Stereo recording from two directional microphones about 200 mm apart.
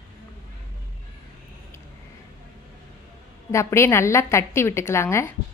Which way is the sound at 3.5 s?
15° left (ahead or behind).